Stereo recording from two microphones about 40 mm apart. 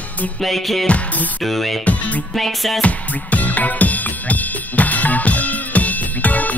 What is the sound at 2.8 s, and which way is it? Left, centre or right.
Music, left.